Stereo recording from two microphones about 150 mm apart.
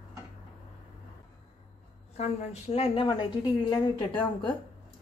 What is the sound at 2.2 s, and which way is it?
A woman's voice, 50° left (ahead or behind).